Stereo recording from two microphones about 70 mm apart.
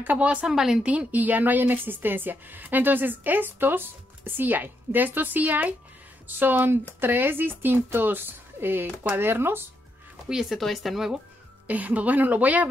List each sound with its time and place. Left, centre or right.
0.0 s a woman's voice: right
0.5 s a woman's voice: centre; by 9.7 s right
10.5 s speech: centre
11.6 s a woman's voice: right